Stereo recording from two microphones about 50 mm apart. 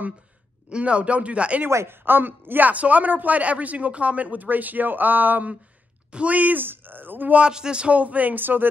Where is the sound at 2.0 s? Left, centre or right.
Right.